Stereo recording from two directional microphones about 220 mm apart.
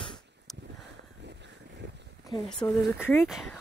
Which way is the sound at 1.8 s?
50° right (ahead or behind).